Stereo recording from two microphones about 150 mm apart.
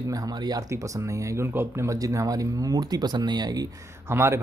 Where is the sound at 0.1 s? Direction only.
25° right (ahead or behind).